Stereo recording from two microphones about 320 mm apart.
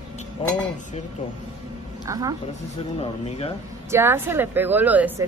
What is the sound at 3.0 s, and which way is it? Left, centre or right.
Speech, centre.